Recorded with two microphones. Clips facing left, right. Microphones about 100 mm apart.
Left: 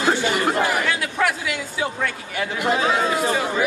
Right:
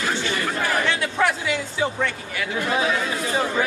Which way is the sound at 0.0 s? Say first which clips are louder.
Left 5 dB; 25° left (ahead or behind).